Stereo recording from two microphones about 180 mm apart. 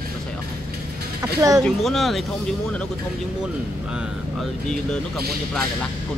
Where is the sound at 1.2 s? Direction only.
20° right (ahead or behind).